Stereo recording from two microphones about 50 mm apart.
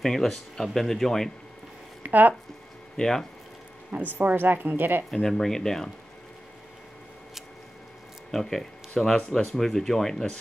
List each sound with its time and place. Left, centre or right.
0.0 s speech: centre
2.0 s speech: right
3.0 s speech: centre
3.9 s a woman's voice: right
5.1 s speech: centre
8.3 s speech: centre